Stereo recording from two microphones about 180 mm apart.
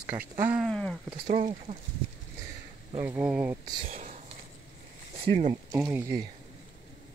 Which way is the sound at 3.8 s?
50° right (ahead or behind).